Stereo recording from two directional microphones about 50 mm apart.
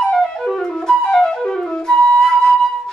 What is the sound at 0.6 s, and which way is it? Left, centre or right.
Flute, centre.